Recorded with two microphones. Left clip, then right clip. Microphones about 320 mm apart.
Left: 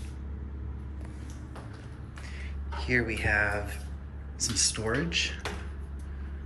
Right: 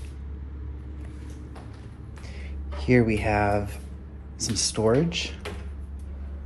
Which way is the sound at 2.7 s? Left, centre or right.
Centre.